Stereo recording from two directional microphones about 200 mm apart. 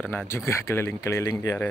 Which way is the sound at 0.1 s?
15° left (ahead or behind).